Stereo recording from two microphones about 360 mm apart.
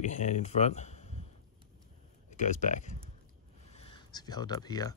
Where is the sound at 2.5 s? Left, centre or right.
Centre.